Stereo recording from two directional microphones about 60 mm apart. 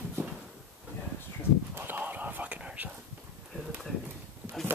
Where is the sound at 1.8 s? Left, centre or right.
Right.